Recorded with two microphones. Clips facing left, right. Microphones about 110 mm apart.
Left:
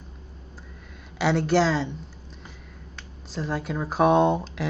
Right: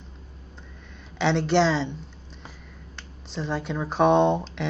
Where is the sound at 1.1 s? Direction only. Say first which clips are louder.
Even; 5° left (ahead or behind).